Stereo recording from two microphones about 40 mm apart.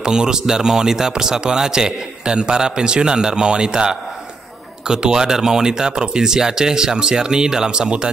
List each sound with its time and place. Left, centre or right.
0.0 s speech: centre